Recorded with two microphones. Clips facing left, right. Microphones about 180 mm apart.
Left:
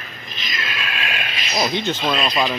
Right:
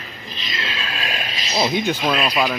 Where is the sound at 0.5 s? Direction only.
30° right (ahead or behind).